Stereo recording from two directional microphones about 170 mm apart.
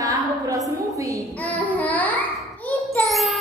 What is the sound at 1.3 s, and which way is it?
Child singing, 10° left (ahead or behind).